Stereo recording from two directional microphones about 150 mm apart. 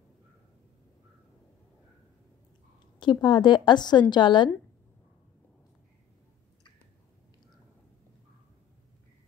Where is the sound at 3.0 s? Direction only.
30° left (ahead or behind).